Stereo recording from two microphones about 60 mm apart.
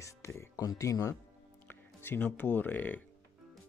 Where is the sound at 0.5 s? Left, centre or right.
Left.